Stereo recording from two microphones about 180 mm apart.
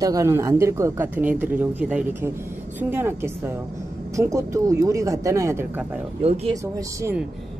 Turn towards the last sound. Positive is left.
turn(degrees=-15)  # may be behind; listen again after turning